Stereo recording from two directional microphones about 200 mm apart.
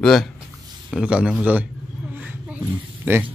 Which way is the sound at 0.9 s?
5° right (ahead or behind).